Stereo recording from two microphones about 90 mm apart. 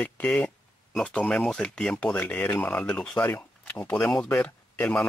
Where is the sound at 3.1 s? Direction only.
30° left (ahead or behind).